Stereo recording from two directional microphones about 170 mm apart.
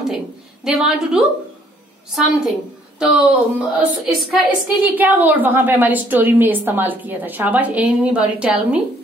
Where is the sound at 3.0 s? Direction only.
10° right (ahead or behind).